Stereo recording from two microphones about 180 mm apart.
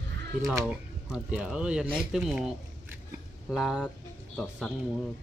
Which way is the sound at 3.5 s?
Centre (ahead or behind).